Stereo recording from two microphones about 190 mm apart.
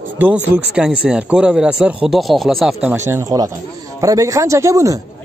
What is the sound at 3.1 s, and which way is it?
Speech, 15° right (ahead or behind).